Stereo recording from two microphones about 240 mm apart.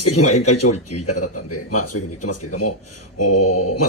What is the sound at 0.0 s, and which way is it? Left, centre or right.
Speech, left.